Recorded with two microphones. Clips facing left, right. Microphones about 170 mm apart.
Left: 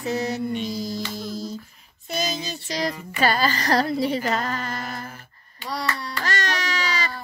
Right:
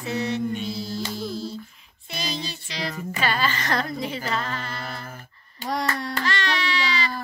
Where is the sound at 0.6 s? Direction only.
40° left (ahead or behind).